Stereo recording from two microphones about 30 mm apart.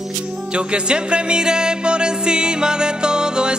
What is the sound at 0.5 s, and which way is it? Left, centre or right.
Music, right.